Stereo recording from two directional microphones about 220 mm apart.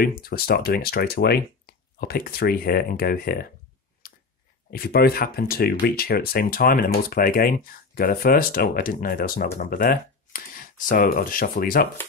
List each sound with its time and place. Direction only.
0.0 s speech: 40° left (ahead or behind)
4.0 s a sound: 45° left (ahead or behind)
4.6 s speech: 45° left (ahead or behind)